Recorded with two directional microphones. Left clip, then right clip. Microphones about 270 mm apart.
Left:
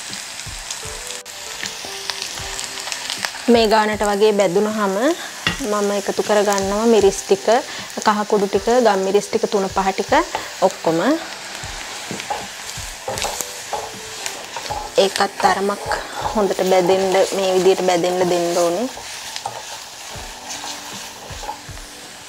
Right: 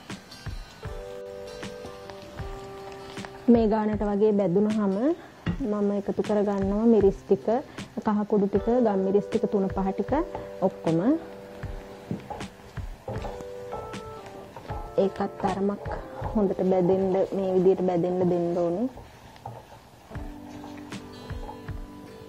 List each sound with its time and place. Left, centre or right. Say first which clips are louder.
2.9 s frying: left 14 dB; centre
5.7 s speech: left 6 dB; centre
7.0 s frying: left 7 dB; centre
8.2 s stir: left 8 dB; centre
8.5 s speech: left 10 dB; centre
10.6 s stir: left 9 dB; left
11.0 s speech: left 7 dB; centre
13.1 s a sound: left 11 dB; centre
15.0 s frying: left 9 dB; centre
15.4 s speech: left 10 dB; centre